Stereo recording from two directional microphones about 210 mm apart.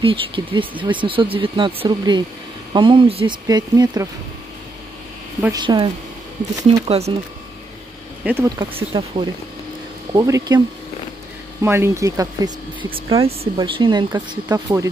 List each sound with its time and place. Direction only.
0.0 s speech: 25° right (ahead or behind)
5.4 s speech: 20° right (ahead or behind)
6.9 s speech: 30° right (ahead or behind)
8.2 s speech: 10° right (ahead or behind)
8.7 s speech: 25° right (ahead or behind)
10.1 s speech: 15° right (ahead or behind)
11.6 s speech: 10° right (ahead or behind)